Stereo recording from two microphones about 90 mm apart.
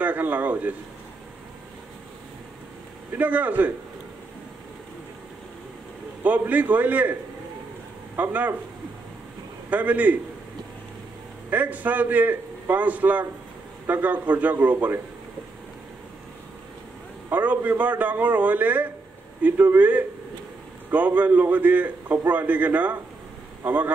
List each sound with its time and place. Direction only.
0.0 s a man's voice: 20° right (ahead or behind)
3.1 s a man's voice: 20° right (ahead or behind)
6.2 s a man's voice: 20° right (ahead or behind)
8.2 s a man's voice: 20° right (ahead or behind)
9.7 s a man's voice: 15° right (ahead or behind)
11.5 s a man's voice: 20° right (ahead or behind)
17.3 s a man's voice: 20° right (ahead or behind)